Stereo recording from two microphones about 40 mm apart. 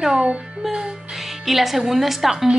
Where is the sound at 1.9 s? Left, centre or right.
Centre.